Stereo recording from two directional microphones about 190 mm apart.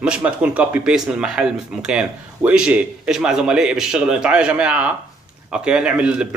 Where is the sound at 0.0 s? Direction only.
5° right (ahead or behind).